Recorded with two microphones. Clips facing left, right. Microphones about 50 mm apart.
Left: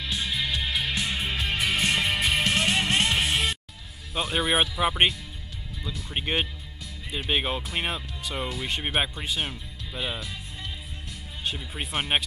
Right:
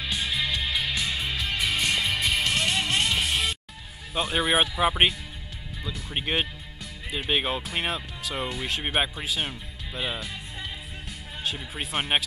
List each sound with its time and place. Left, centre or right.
0.0 s music: centre
0.5 s music: centre
0.8 s music: centre
4.1 s speech: centre
11.4 s speech: centre